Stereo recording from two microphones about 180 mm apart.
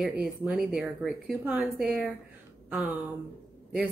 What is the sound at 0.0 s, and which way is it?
A woman's voice, 5° right (ahead or behind).